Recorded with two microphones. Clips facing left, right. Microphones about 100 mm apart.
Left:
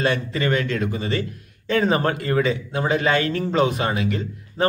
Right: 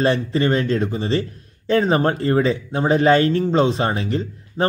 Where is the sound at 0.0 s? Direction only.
30° right (ahead or behind).